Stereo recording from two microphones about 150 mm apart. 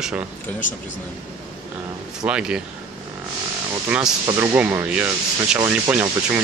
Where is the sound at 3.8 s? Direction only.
10° right (ahead or behind).